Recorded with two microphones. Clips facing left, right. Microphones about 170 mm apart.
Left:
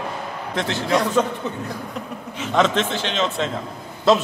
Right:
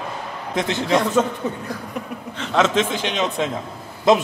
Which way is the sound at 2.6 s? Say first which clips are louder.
Right 1 dB; 10° right (ahead or behind).